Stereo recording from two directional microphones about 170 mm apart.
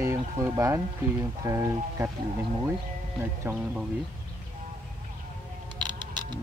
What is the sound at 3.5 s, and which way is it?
Speech, 15° right (ahead or behind).